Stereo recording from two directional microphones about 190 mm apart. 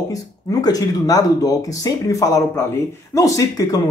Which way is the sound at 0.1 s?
20° left (ahead or behind).